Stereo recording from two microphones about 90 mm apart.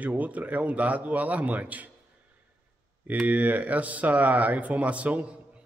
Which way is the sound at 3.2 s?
15° right (ahead or behind).